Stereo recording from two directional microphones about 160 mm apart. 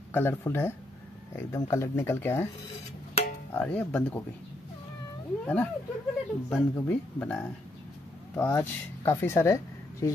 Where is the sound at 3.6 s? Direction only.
10° left (ahead or behind).